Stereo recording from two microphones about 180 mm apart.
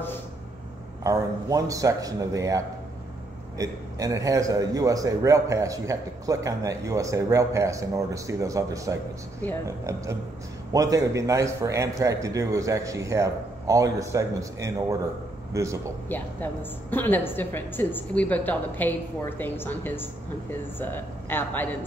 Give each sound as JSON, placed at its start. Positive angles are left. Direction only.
{"t": 1.0, "sound": "a man's voice", "side_deg": -20}
{"t": 16.1, "sound": "a woman's voice", "side_deg": 10}